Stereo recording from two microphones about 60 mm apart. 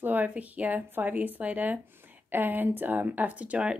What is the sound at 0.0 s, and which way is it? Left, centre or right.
Speech, right.